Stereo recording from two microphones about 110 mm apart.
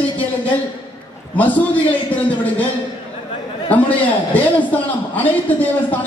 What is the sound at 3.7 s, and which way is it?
A man's voice, 15° left (ahead or behind).